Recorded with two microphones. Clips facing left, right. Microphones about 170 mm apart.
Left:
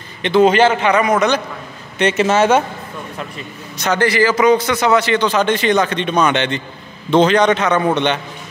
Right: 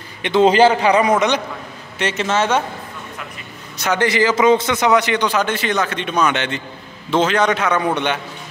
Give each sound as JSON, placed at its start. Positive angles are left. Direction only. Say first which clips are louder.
{"t": 0.2, "sound": "a man's voice", "louder": "left 2 dB", "side_deg": -20}
{"t": 0.5, "sound": "a man's voice", "louder": "right 1 dB", "side_deg": -30}
{"t": 1.1, "sound": "a man's voice", "louder": "left 1 dB", "side_deg": -20}
{"t": 2.1, "sound": "a man's voice", "louder": "left 4 dB", "side_deg": 10}
{"t": 3.7, "sound": "a man's voice", "louder": "left 2 dB", "side_deg": -5}
{"t": 4.0, "sound": "a man's voice", "louder": "left 1 dB", "side_deg": -20}